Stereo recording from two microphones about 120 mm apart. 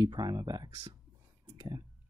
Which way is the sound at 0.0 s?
35° right (ahead or behind).